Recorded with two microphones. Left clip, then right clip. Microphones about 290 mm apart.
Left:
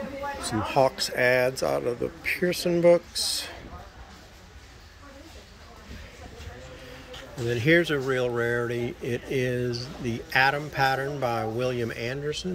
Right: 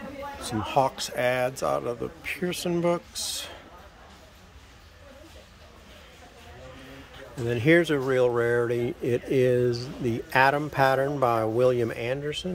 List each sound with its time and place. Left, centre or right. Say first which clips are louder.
0.4 s speech: left 1 dB; centre
7.4 s speech: right 1 dB; centre